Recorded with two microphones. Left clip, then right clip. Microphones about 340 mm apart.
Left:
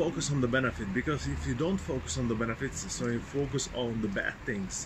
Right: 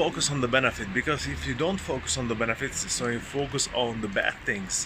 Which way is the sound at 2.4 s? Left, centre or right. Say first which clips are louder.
Right 6 dB; right.